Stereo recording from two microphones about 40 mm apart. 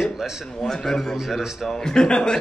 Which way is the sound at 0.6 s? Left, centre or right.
Centre.